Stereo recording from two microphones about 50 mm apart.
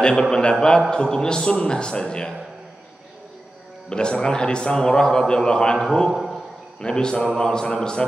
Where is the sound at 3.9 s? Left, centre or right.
Centre.